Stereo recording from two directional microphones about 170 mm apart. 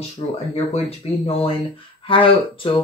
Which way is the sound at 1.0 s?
35° left (ahead or behind).